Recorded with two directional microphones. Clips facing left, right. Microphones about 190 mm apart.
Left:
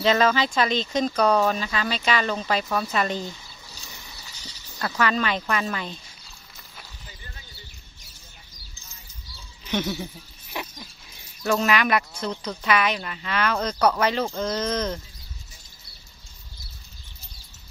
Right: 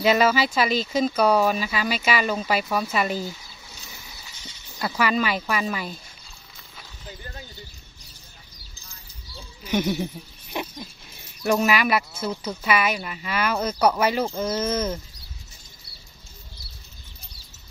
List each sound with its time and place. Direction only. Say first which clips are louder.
0.0 s speech: right 1 dB; 10° right (ahead or behind)
9.7 s a sound: right 3 dB; 15° right (ahead or behind)
10.5 s dog: right 4 dB; 15° right (ahead or behind)
11.4 s speech: right 1 dB; 10° right (ahead or behind)